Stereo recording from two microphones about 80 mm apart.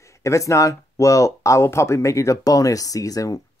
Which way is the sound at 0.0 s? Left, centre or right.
Left.